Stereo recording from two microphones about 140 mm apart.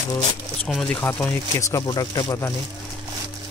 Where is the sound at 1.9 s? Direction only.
30° left (ahead or behind).